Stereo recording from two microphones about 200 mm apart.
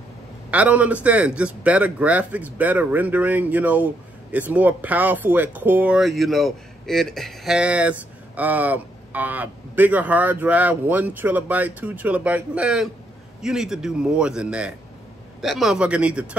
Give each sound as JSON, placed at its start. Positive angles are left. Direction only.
{"t": 0.5, "sound": "a man's voice", "side_deg": -5}